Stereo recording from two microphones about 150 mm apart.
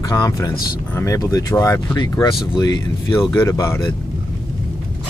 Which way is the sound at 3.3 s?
20° left (ahead or behind).